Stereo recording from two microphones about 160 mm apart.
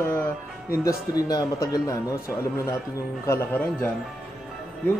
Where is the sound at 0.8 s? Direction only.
20° left (ahead or behind).